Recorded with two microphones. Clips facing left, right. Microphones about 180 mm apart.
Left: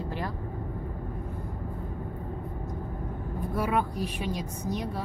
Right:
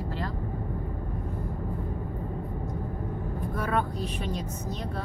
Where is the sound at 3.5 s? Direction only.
10° left (ahead or behind).